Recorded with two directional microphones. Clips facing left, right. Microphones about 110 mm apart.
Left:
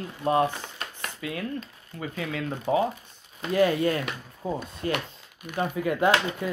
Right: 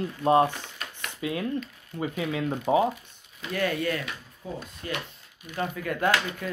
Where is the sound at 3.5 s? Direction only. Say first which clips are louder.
Left 5 dB; 25° left (ahead or behind).